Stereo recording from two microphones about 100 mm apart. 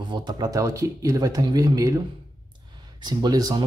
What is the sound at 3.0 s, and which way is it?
Speech, 40° right (ahead or behind).